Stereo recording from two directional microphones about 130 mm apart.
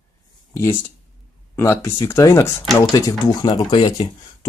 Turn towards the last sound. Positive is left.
turn(degrees=40)  # may be behind; listen again after turning